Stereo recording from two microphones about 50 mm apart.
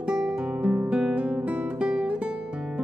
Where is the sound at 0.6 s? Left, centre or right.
Right.